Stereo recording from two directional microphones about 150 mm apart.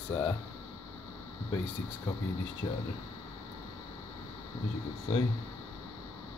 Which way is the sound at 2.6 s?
35° left (ahead or behind).